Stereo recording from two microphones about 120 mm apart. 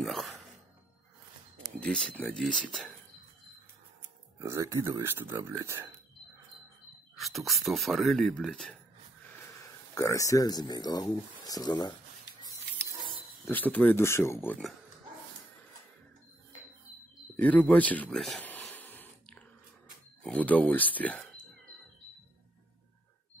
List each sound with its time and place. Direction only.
0.0 s a sound: centre (ahead or behind)
1.8 s speech: 5° left (ahead or behind)
4.4 s speech: 25° right (ahead or behind)
7.2 s speech: centre (ahead or behind)
9.9 s speech: 25° left (ahead or behind)
13.5 s speech: 15° left (ahead or behind)
17.4 s speech: 10° left (ahead or behind)
18.4 s a sound: 15° left (ahead or behind)
20.2 s speech: 10° left (ahead or behind)